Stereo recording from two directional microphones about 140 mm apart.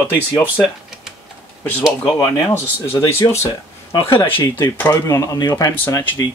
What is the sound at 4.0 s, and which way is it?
Speech, 40° left (ahead or behind).